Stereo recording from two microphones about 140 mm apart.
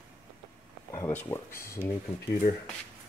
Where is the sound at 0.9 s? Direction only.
15° left (ahead or behind).